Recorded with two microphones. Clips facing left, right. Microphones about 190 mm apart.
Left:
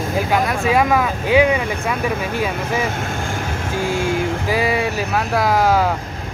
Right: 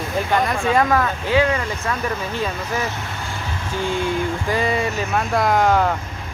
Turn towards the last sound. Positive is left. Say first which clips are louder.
# left 1 dB
turn(degrees=5)  # may be behind; listen again after turning